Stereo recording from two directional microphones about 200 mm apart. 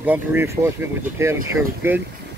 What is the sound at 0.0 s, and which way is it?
Speech, 10° right (ahead or behind).